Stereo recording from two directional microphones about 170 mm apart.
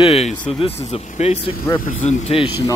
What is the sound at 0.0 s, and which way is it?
Speech, 35° left (ahead or behind).